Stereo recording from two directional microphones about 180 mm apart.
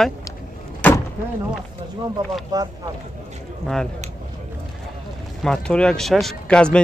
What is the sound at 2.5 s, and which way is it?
Speech, 20° right (ahead or behind).